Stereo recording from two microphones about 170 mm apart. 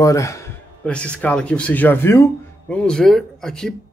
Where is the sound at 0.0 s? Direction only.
20° left (ahead or behind).